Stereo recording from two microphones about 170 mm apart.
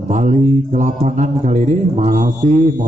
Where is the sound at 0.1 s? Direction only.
45° right (ahead or behind).